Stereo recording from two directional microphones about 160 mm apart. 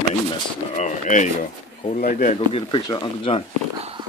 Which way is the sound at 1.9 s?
60° left (ahead or behind).